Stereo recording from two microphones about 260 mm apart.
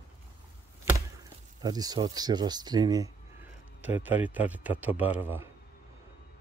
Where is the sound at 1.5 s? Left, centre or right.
Centre.